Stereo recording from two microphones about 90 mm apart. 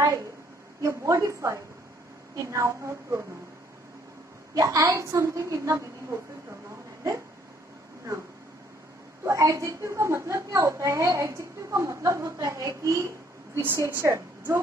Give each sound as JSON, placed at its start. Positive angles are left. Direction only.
{"t": 0.0, "sound": "a woman's voice", "side_deg": -40}
{"t": 4.6, "sound": "a woman's voice", "side_deg": -35}
{"t": 9.2, "sound": "a woman's voice", "side_deg": -35}
{"t": 13.6, "sound": "a woman's voice", "side_deg": -25}